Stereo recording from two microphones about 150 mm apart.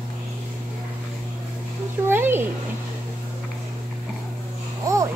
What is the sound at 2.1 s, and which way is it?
Speech, 15° right (ahead or behind).